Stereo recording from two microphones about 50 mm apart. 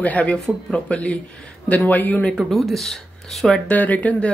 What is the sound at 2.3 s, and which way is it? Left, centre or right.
Speech, centre.